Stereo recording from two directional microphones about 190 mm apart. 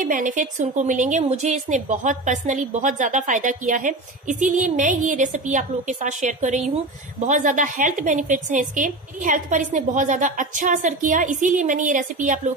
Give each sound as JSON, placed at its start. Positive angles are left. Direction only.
{"t": 0.0, "sound": "a woman's voice", "side_deg": -45}